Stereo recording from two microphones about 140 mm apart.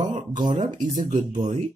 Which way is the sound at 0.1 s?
60° right (ahead or behind).